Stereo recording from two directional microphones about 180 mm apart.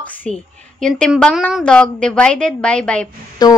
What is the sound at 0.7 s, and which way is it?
A woman's voice, 5° left (ahead or behind).